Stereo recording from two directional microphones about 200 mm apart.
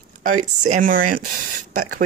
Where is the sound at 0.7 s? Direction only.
40° right (ahead or behind).